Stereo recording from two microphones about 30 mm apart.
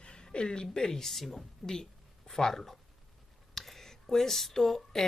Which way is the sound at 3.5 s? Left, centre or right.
Centre.